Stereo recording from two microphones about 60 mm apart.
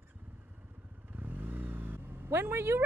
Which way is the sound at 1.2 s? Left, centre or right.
Right.